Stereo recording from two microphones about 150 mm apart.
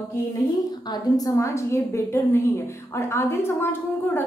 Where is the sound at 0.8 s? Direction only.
25° left (ahead or behind).